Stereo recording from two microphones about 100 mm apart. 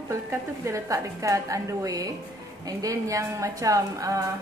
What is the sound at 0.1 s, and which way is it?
A woman's voice, 30° right (ahead or behind).